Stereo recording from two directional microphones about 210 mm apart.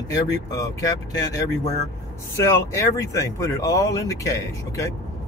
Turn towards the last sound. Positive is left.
turn(degrees=15)  # may be behind; listen again after turning